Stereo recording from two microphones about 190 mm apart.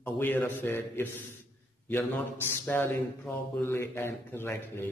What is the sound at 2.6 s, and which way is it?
Speech, 10° left (ahead or behind).